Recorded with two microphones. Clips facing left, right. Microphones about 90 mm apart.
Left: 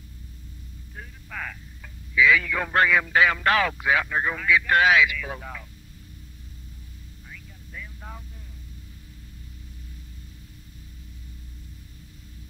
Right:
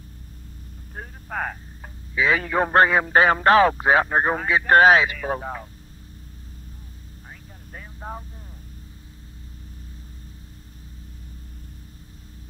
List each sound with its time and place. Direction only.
0.9 s speech: 45° right (ahead or behind)
7.2 s vehicle: 40° right (ahead or behind)